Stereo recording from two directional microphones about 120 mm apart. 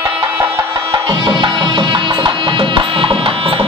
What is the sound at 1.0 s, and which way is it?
Music, 40° right (ahead or behind).